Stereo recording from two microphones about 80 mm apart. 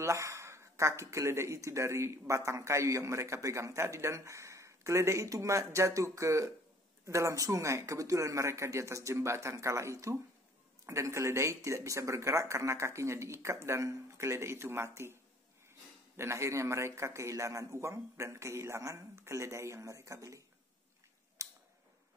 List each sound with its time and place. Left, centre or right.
0.0 s speech: right
16.2 s speech: right
21.4 s scissors: right